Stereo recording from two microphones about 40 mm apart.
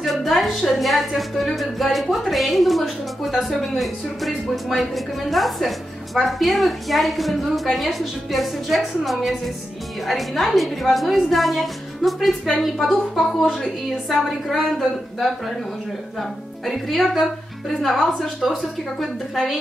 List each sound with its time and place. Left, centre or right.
0.0 s a woman's voice: centre